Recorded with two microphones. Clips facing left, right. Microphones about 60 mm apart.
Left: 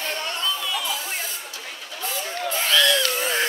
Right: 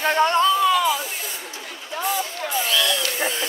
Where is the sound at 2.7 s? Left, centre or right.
Left.